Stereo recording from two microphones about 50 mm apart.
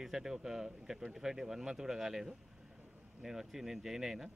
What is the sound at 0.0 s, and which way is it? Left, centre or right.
Speech, centre.